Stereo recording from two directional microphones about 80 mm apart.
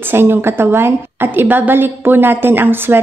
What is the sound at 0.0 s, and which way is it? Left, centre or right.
A woman's voice, right.